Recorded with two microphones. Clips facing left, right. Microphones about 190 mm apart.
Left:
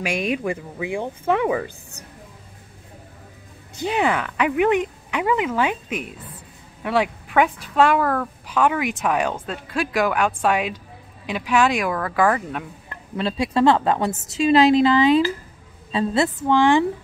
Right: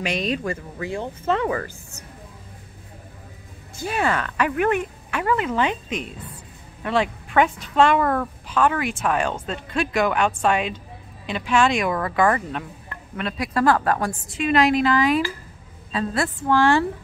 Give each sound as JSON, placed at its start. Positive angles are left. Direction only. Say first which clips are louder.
{"t": 0.0, "sound": "speech", "louder": "left 1 dB", "side_deg": 10}
{"t": 3.8, "sound": "speech", "louder": "left 2 dB", "side_deg": 15}
{"t": 8.5, "sound": "speech", "louder": "left 1 dB", "side_deg": 10}
{"t": 12.9, "sound": "a woman's voice", "louder": "left 4 dB", "side_deg": 25}